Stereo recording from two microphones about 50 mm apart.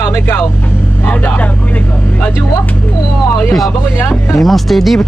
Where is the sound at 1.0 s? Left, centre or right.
Left.